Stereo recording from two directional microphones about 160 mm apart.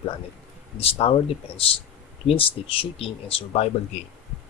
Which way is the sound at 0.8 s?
35° left (ahead or behind).